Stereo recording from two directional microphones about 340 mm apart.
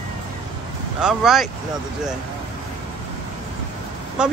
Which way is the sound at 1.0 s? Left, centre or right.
Centre.